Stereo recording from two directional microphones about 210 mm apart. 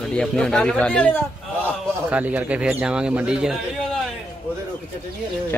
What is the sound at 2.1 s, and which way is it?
Speech, 5° right (ahead or behind).